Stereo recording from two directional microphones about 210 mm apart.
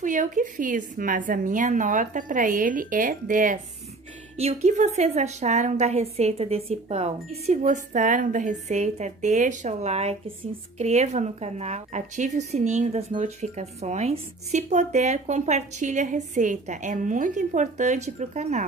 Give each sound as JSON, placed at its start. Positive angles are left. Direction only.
{"t": 0.0, "sound": "speech", "side_deg": -35}